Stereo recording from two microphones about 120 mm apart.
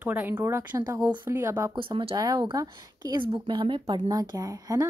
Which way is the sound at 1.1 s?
20° right (ahead or behind).